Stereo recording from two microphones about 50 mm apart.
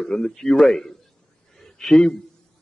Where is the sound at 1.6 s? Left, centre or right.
Centre.